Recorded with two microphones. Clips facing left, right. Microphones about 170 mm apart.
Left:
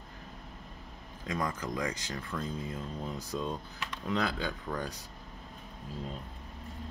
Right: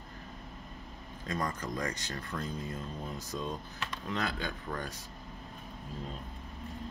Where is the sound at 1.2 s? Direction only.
10° left (ahead or behind).